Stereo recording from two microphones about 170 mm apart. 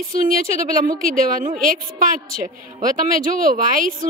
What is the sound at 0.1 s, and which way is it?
A woman's voice, 55° right (ahead or behind).